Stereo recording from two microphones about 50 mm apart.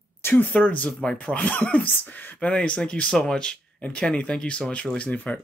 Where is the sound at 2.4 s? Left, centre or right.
Left.